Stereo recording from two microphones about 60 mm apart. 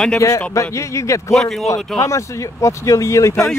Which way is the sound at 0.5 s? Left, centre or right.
Left.